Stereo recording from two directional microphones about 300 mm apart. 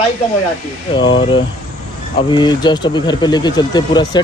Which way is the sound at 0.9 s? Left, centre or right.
Centre.